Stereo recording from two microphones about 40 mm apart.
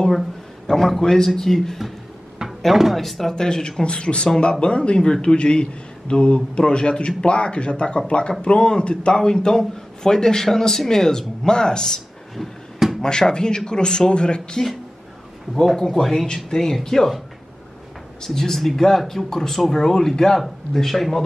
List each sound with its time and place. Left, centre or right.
0.7 s speech: centre
2.6 s speech: centre
3.0 s a man's voice: centre
12.4 s a sound: centre
13.0 s a man's voice: centre
15.5 s speech: centre
18.2 s speech: centre